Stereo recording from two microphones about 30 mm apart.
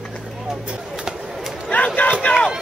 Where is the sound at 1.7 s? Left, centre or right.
Left.